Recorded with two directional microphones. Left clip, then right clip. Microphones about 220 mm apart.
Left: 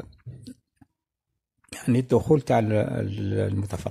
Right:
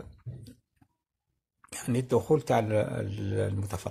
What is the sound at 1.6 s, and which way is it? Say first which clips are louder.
Speech: left 6 dB; 40° left (ahead or behind).